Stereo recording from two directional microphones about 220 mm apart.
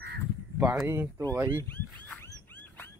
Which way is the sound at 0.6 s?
10° right (ahead or behind).